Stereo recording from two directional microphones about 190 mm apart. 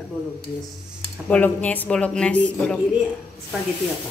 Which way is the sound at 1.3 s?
10° left (ahead or behind).